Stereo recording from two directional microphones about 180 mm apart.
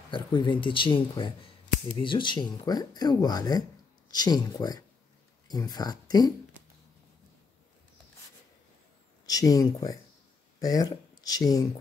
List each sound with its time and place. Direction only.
0.1 s speech: 25° left (ahead or behind)
9.2 s speech: 20° left (ahead or behind)